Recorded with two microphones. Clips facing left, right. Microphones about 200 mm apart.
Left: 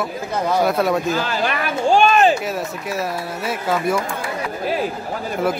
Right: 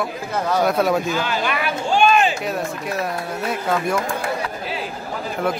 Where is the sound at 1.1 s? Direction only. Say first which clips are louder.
Left 1 dB; 40° left (ahead or behind).